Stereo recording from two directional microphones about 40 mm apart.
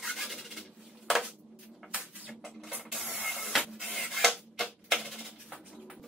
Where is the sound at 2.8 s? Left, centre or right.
Centre.